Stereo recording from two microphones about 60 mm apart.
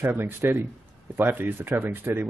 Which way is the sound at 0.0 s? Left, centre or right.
Right.